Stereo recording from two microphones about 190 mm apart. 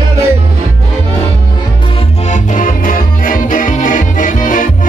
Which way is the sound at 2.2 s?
40° left (ahead or behind).